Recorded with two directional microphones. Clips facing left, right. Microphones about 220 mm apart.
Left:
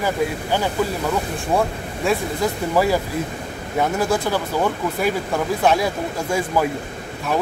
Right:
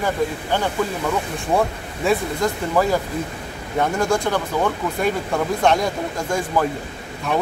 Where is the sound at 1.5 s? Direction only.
Centre (ahead or behind).